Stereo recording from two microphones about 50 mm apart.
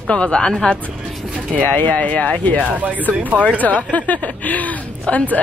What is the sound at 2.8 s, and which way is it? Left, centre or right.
Speech, right.